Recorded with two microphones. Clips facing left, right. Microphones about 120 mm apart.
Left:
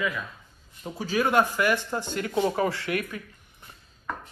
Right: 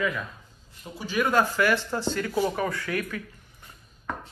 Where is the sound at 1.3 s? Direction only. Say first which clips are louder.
Right 1 dB; 15° left (ahead or behind).